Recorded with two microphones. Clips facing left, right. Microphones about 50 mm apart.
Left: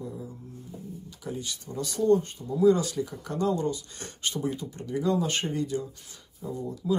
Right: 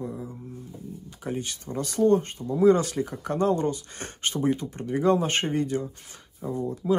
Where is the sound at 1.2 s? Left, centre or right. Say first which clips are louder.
Right 4 dB; right.